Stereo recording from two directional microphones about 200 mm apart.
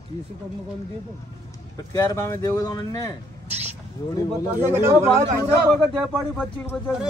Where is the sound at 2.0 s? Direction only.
15° left (ahead or behind).